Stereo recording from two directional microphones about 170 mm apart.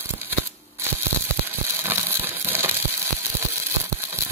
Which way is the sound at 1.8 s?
15° right (ahead or behind).